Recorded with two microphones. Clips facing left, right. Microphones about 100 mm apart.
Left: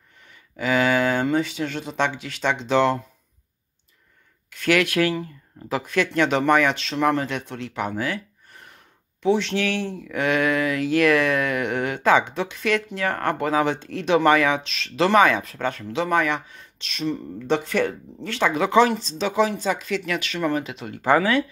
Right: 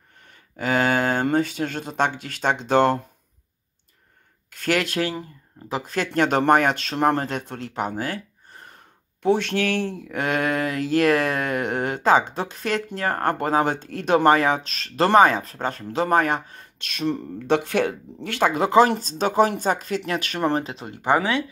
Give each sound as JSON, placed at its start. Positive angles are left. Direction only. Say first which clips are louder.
{"t": 0.3, "sound": "speech", "louder": "even", "side_deg": -40}
{"t": 4.5, "sound": "speech", "louder": "left 3 dB", "side_deg": -40}
{"t": 9.2, "sound": "speech", "louder": "even", "side_deg": -50}